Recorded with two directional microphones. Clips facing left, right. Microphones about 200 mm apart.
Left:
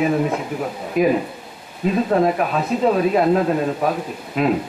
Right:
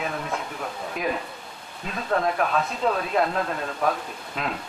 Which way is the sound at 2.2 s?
10° left (ahead or behind).